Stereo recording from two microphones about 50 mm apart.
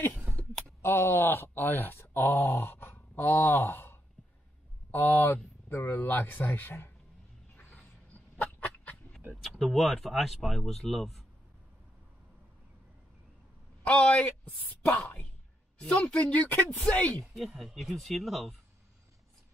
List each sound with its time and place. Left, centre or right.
0.2 s a sound: right
0.8 s speech: left
7.5 s chicken: left
9.4 s speech: centre
13.8 s speech: left
15.8 s speech: left
17.2 s speech: centre